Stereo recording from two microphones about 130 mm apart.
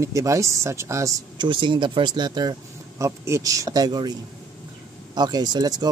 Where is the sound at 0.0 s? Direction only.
25° right (ahead or behind).